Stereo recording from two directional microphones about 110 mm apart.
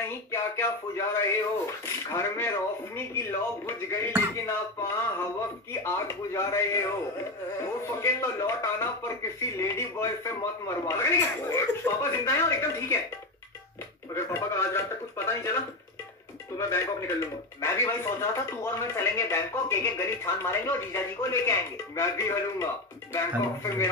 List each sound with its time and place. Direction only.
0.3 s speech: 25° left (ahead or behind)
8.0 s speech: 25° left (ahead or behind)
14.1 s speech: 25° left (ahead or behind)